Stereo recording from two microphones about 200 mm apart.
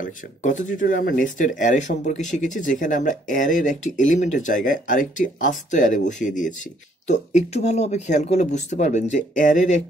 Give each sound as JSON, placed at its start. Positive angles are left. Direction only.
{"t": 0.0, "sound": "speech", "side_deg": 40}